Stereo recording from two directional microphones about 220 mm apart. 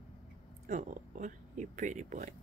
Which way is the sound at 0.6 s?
35° right (ahead or behind).